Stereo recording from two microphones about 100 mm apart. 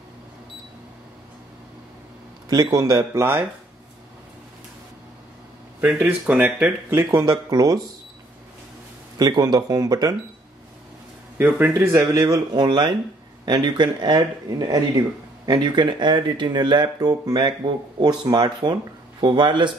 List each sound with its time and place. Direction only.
2.5 s speech: 40° right (ahead or behind)
2.8 s speech: 30° right (ahead or behind)
5.8 s speech: 15° right (ahead or behind)
6.9 s speech: 25° right (ahead or behind)
7.2 s speech: 40° right (ahead or behind)
9.2 s speech: 40° right (ahead or behind)
11.3 s speech: 20° right (ahead or behind)
12.5 s speech: 50° right (ahead or behind)